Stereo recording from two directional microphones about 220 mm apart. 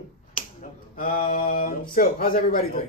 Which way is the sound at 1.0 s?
35° left (ahead or behind).